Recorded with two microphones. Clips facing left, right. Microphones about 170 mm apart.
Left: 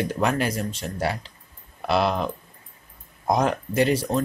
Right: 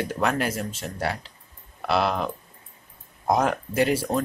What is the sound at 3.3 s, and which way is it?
Speech, 5° right (ahead or behind).